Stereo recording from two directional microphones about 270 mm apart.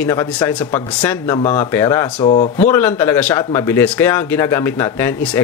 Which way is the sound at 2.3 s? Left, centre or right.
Left.